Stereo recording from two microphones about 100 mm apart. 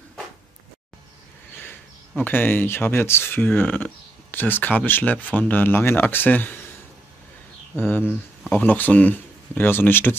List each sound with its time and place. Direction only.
1.6 s speech: 20° left (ahead or behind)
7.7 s speech: 20° left (ahead or behind)